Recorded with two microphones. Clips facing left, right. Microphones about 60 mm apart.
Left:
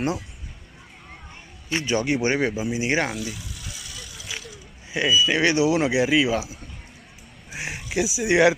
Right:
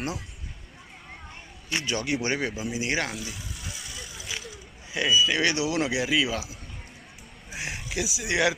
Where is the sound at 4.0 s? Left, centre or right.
Centre.